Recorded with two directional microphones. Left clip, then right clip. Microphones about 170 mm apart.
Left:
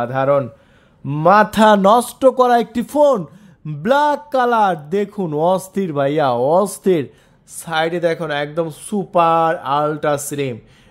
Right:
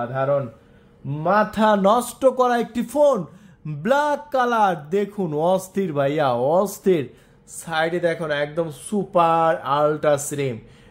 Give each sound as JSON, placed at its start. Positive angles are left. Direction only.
{"t": 0.0, "sound": "speech", "side_deg": 65}
{"t": 1.6, "sound": "a man's voice", "side_deg": 35}
{"t": 7.6, "sound": "speech", "side_deg": 35}